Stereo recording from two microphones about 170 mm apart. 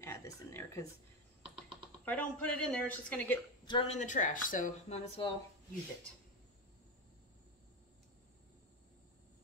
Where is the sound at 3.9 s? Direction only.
50° left (ahead or behind).